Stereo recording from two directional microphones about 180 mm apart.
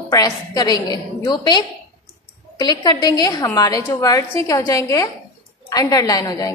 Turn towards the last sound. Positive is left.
turn(degrees=20)  # may be behind; listen again after turning